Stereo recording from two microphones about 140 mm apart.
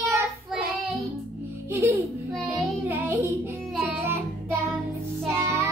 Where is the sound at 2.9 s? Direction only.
15° right (ahead or behind).